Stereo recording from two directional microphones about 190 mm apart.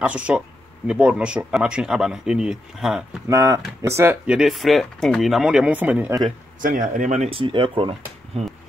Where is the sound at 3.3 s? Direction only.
15° right (ahead or behind).